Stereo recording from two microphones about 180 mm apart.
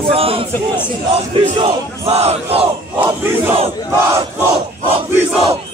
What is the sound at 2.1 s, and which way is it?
Speech, 35° right (ahead or behind).